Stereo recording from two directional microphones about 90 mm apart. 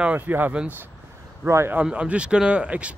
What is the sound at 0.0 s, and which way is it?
Speech, 15° right (ahead or behind).